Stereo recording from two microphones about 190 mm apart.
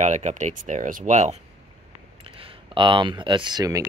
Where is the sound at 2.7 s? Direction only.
25° right (ahead or behind).